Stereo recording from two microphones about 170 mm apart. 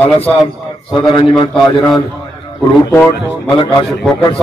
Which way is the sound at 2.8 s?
10° left (ahead or behind).